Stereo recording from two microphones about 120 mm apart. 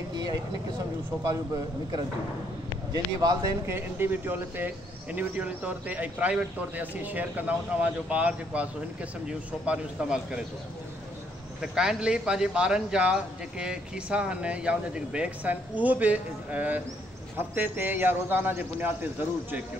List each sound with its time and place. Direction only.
0.1 s vehicle: 35° right (ahead or behind)
2.9 s speech: 30° right (ahead or behind); by 10.4 s 5° right (ahead or behind)
11.6 s speech: 5° right (ahead or behind)